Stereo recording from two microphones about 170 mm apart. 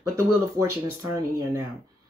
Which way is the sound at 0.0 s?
15° right (ahead or behind).